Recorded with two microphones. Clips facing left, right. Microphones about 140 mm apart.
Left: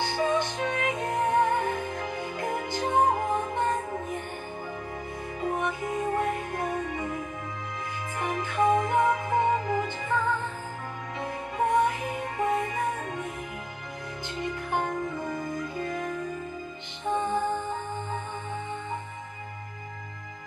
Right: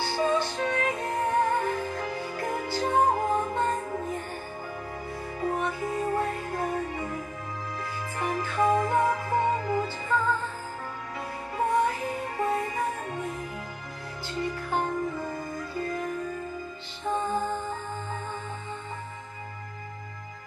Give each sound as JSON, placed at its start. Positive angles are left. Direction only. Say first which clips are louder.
{"t": 0.0, "sound": "music", "louder": "even", "side_deg": 20}
{"t": 5.5, "sound": "music", "louder": "even", "side_deg": 20}
{"t": 8.2, "sound": "music", "louder": "even", "side_deg": 20}
{"t": 14.4, "sound": "music", "louder": "right 1 dB", "side_deg": 20}